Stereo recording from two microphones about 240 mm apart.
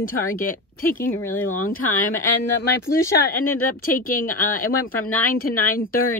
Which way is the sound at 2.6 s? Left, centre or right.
Left.